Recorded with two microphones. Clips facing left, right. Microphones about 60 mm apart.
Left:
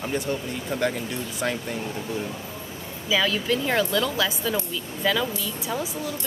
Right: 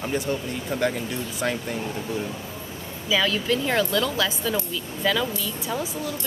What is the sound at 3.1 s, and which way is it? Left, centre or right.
Speech, centre.